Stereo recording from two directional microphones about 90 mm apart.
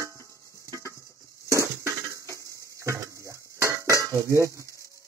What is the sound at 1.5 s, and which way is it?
Dishes, 35° right (ahead or behind).